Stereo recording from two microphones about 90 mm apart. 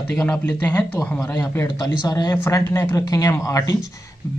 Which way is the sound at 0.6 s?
20° left (ahead or behind).